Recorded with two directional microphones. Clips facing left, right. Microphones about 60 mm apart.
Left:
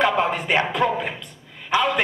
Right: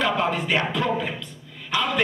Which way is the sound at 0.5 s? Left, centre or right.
Left.